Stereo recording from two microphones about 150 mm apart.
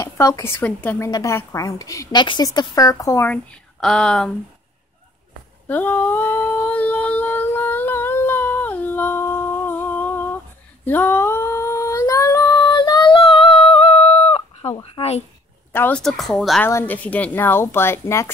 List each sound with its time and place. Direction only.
0.0 s a woman's voice: 20° left (ahead or behind)
3.8 s speech: 5° left (ahead or behind)
5.7 s humming: 10° left (ahead or behind); by 13.8 s 40° left (ahead or behind)
14.8 s a woman's voice: 40° left (ahead or behind)
15.7 s a woman's voice: 15° left (ahead or behind)
16.0 s speech: centre (ahead or behind)
16.6 s a woman's voice: 15° left (ahead or behind)